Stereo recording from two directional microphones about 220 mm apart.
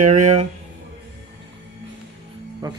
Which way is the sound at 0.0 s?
35° right (ahead or behind).